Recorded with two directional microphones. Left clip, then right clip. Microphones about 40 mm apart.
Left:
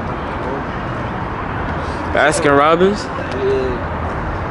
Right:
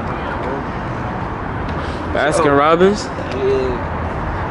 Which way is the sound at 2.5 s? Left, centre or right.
Centre.